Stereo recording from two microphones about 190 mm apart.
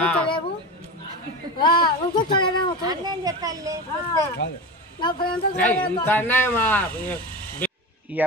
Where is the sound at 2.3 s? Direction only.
25° left (ahead or behind).